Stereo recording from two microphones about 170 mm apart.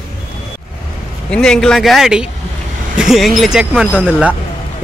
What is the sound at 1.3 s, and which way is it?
A man's voice, 5° left (ahead or behind).